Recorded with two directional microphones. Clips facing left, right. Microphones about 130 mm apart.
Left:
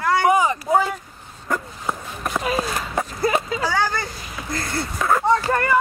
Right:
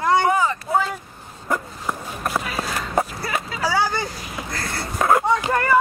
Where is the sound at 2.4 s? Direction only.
25° left (ahead or behind).